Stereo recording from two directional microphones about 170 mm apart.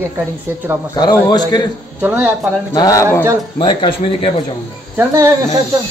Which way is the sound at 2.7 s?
20° left (ahead or behind).